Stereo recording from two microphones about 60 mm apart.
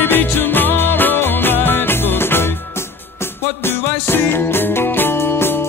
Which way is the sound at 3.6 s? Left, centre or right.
Left.